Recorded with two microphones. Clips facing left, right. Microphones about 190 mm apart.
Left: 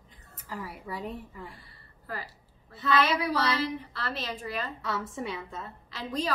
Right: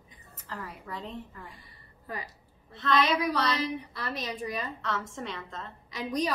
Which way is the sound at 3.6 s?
15° right (ahead or behind).